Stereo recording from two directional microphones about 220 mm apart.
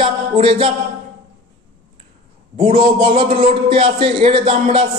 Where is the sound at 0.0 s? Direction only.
25° right (ahead or behind).